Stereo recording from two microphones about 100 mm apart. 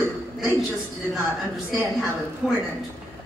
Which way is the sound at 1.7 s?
10° right (ahead or behind).